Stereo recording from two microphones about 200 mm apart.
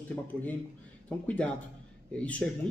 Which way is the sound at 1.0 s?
5° left (ahead or behind).